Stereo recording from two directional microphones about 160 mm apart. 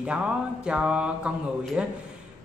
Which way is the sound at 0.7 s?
5° right (ahead or behind).